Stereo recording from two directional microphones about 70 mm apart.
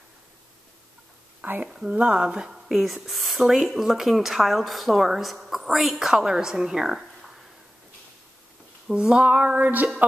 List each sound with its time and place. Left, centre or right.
1.4 s speech: right; by 7.2 s centre
8.8 s female singing: centre